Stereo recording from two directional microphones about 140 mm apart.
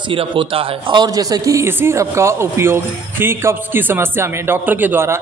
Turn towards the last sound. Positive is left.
turn(degrees=-15)  # may be behind; listen again after turning